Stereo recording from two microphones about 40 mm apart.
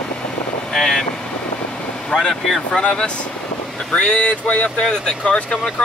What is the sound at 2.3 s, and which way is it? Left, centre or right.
Speech, centre.